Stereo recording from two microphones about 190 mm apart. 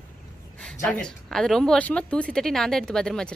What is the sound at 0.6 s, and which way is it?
Speech, 5° left (ahead or behind).